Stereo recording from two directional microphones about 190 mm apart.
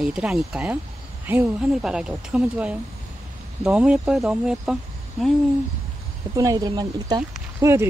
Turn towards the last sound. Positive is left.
turn(degrees=-15)  # may be behind; listen again after turning